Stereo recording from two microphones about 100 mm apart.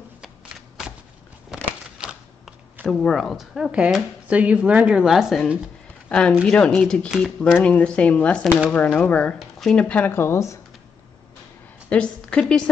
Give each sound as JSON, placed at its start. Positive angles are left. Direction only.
{"t": 1.5, "sound": "shuffling cards", "side_deg": -5}
{"t": 2.9, "sound": "a woman's voice", "side_deg": 5}
{"t": 6.0, "sound": "speech", "side_deg": 10}
{"t": 7.1, "sound": "a woman's voice", "side_deg": -5}
{"t": 7.6, "sound": "speech", "side_deg": 10}
{"t": 11.9, "sound": "speech", "side_deg": 10}